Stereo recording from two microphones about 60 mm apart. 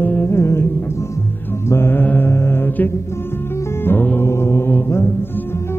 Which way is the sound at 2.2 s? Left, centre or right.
Left.